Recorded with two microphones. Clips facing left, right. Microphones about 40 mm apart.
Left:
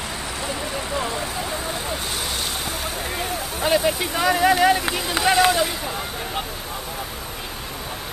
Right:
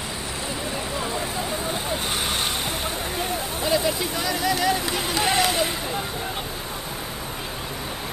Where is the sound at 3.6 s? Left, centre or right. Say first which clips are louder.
Left 3 dB; left.